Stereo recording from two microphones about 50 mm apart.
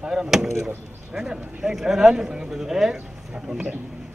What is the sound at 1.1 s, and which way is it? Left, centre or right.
Speech, centre.